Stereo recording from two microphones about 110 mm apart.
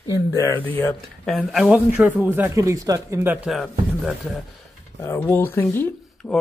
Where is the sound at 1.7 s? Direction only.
15° right (ahead or behind); by 3.2 s 30° right (ahead or behind).